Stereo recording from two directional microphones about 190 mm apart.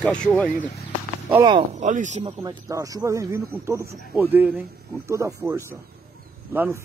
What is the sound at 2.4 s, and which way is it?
Speech, 20° right (ahead or behind).